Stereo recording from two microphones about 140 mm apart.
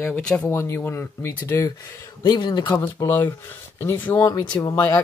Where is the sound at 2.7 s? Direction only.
15° left (ahead or behind).